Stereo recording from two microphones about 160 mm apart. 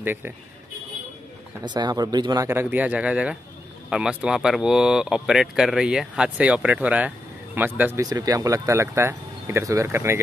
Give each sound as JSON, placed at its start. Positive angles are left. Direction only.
{"t": 0.0, "sound": "speech", "side_deg": -15}
{"t": 1.6, "sound": "speech", "side_deg": -25}